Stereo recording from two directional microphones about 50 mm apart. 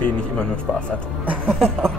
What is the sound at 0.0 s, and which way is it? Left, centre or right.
Speech, left.